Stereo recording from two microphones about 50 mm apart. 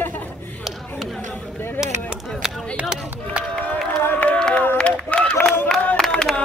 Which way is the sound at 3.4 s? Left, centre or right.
Right.